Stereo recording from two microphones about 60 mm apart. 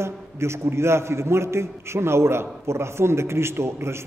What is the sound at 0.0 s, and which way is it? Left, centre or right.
A man's voice, right.